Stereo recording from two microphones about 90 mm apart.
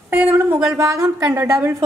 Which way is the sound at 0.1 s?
20° right (ahead or behind).